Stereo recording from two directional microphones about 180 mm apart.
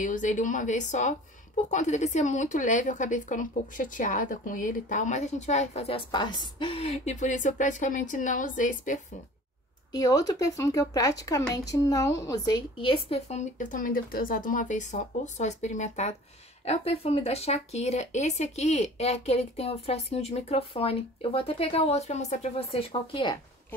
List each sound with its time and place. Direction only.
0.0 s speech: 45° left (ahead or behind)
9.9 s speech: 20° left (ahead or behind)